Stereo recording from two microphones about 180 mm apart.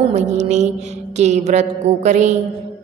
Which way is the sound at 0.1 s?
40° right (ahead or behind).